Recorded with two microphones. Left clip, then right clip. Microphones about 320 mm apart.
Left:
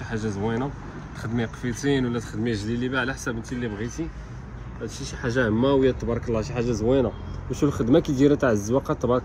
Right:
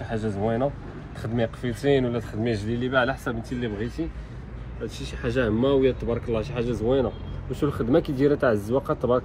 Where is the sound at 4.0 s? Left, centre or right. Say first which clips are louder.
Right 1 dB; centre.